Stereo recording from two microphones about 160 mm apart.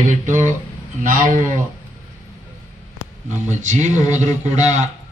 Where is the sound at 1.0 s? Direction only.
55° right (ahead or behind).